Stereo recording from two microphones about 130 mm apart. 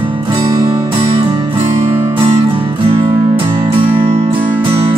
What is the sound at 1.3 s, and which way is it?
Music, 40° right (ahead or behind).